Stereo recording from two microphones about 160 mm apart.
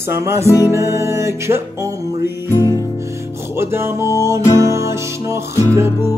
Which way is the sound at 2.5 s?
15° left (ahead or behind).